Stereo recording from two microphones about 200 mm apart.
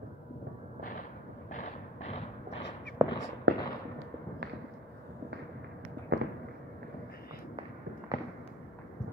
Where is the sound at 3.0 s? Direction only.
15° right (ahead or behind).